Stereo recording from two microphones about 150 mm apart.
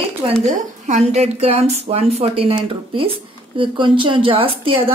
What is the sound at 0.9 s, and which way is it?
Speech, 45° right (ahead or behind).